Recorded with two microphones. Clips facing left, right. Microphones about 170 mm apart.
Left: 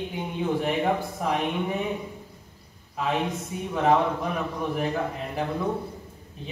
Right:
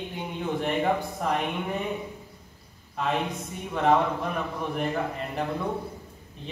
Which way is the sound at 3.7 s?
5° left (ahead or behind).